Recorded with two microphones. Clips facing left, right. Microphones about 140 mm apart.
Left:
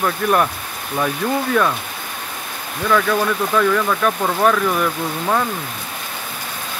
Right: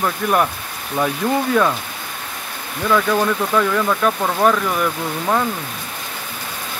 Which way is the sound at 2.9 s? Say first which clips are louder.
Even; 10° right (ahead or behind).